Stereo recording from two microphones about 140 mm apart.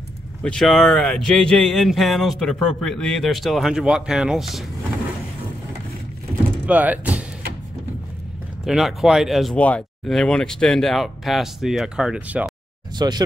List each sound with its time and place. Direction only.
0.4 s speech: 5° left (ahead or behind)
6.6 s speech: 10° right (ahead or behind)
8.6 s speech: centre (ahead or behind)
12.9 s speech: 30° right (ahead or behind)